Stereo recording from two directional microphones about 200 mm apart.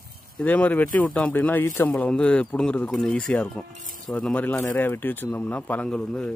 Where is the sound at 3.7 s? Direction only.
40° right (ahead or behind).